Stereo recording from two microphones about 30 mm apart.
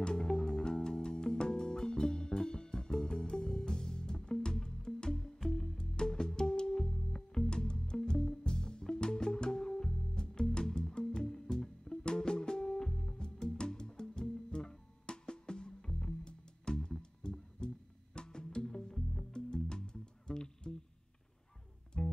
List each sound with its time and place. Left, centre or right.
0.0 s music: left
22.0 s music: centre